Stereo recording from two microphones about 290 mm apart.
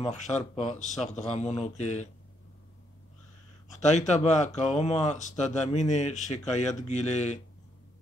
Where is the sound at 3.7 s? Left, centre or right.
Left.